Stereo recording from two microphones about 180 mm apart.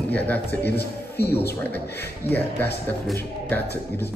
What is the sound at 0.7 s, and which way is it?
Speech, 65° left (ahead or behind).